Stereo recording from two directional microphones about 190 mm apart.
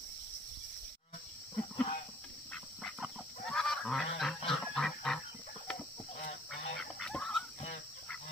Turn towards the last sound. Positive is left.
turn(degrees=0)  # may be behind; listen again after turning